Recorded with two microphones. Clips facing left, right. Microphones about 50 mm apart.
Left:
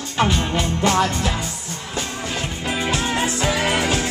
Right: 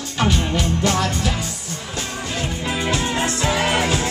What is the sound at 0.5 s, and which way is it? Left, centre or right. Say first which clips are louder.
Music: left 1 dB; centre.